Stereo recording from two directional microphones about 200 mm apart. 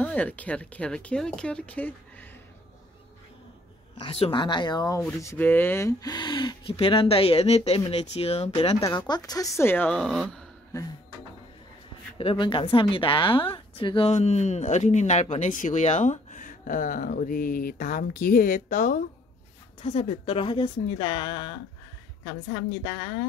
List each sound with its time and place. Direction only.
0.0 s speech: 5° left (ahead or behind)
4.0 s speech: 25° left (ahead or behind)
8.8 s speech: 20° left (ahead or behind); by 10.4 s centre (ahead or behind)
12.2 s speech: 25° left (ahead or behind); by 18.9 s 40° left (ahead or behind)
19.8 s speech: 30° left (ahead or behind)